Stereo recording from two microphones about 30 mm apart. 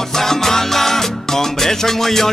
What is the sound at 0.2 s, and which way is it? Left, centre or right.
Music, centre.